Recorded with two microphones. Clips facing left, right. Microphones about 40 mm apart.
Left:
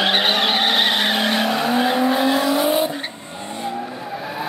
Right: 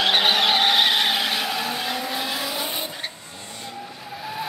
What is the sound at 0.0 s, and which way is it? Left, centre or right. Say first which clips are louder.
Vehicle: left 1 dB; centre.